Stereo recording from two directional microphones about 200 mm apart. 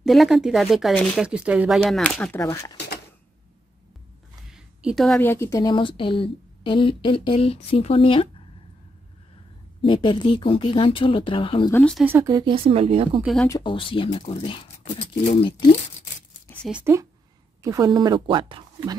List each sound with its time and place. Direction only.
0.0 s speech: centre (ahead or behind)
4.5 s a woman's voice: 5° right (ahead or behind); by 8.3 s 25° left (ahead or behind)
9.8 s a woman's voice: 25° left (ahead or behind)
11.7 s speech: 5° left (ahead or behind)
12.0 s speech: 10° right (ahead or behind); by 13.2 s 30° right (ahead or behind)
13.2 s speech: centre (ahead or behind)
13.5 s a woman's voice: 25° left (ahead or behind)
16.6 s a woman's voice: 10° right (ahead or behind); by 18.9 s 25° right (ahead or behind)